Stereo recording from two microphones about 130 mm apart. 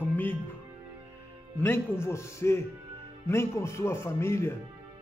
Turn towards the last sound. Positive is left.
turn(degrees=20)  # may be behind; listen again after turning